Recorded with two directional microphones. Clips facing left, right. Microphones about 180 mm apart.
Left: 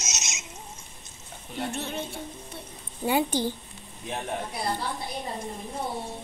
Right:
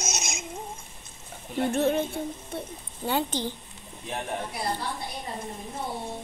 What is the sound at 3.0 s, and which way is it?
Speech, 10° left (ahead or behind).